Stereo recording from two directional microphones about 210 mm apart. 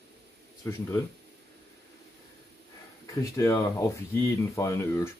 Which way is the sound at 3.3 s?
15° left (ahead or behind).